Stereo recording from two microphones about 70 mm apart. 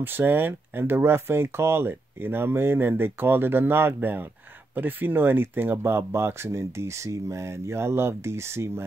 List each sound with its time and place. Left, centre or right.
0.0 s speech: right